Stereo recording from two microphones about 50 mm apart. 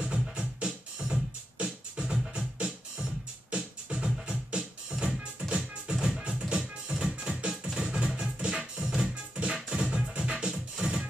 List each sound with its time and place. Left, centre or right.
0.0 s music: centre
8.8 s music: centre